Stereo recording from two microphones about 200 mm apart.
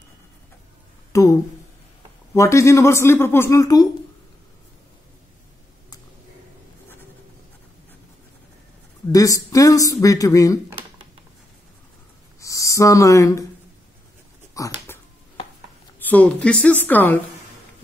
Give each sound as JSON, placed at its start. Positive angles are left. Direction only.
{"t": 1.1, "sound": "a woman's voice", "side_deg": 15}
{"t": 2.3, "sound": "a woman's voice", "side_deg": 15}
{"t": 9.1, "sound": "a woman's voice", "side_deg": 15}
{"t": 12.4, "sound": "speech", "side_deg": 15}
{"t": 14.5, "sound": "a sound", "side_deg": 15}
{"t": 16.0, "sound": "a woman's voice", "side_deg": 5}